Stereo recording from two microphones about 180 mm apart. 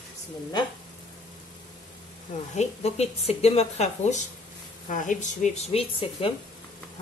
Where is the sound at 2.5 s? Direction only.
40° left (ahead or behind).